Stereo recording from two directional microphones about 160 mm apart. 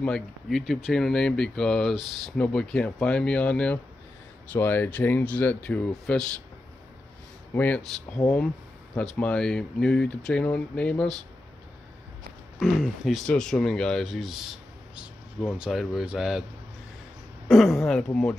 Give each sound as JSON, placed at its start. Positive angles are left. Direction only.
{"t": 0.0, "sound": "speech", "side_deg": 5}
{"t": 7.5, "sound": "speech", "side_deg": 10}
{"t": 12.5, "sound": "speech", "side_deg": 0}
{"t": 15.6, "sound": "speech", "side_deg": 0}
{"t": 17.5, "sound": "speech", "side_deg": 0}